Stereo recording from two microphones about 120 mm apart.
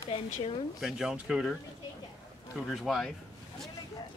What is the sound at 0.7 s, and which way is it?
Speech, 5° right (ahead or behind).